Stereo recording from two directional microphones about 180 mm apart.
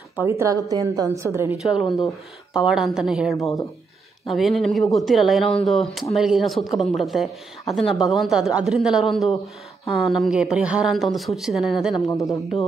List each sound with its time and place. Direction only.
0.2 s a woman's voice: 15° right (ahead or behind)
1.9 s speech: centre (ahead or behind)
12.1 s speech: 15° left (ahead or behind)